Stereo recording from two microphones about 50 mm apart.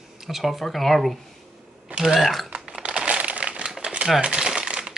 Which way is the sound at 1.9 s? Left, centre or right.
Centre.